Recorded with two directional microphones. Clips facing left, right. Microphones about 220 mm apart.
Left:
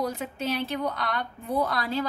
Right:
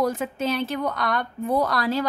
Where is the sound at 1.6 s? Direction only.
85° right.